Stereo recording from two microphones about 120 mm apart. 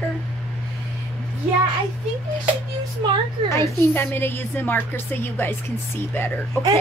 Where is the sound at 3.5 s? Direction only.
20° left (ahead or behind).